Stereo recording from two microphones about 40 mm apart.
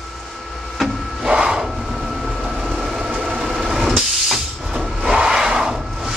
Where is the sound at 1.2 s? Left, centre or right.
Centre.